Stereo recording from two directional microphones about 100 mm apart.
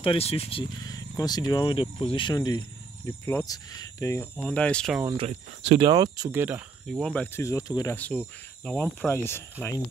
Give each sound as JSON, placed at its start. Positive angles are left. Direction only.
{"t": 0.0, "sound": "speech", "side_deg": 75}
{"t": 0.8, "sound": "speech", "side_deg": 40}
{"t": 2.3, "sound": "speech", "side_deg": 45}
{"t": 3.1, "sound": "speech", "side_deg": 20}
{"t": 3.4, "sound": "speech", "side_deg": 35}
{"t": 4.4, "sound": "speech", "side_deg": 10}
{"t": 5.1, "sound": "speech", "side_deg": -80}
{"t": 5.8, "sound": "speech", "side_deg": -45}
{"t": 6.3, "sound": "speech", "side_deg": -20}
{"t": 6.9, "sound": "speech", "side_deg": 5}
{"t": 7.3, "sound": "speech", "side_deg": 30}
{"t": 7.9, "sound": "speech", "side_deg": 15}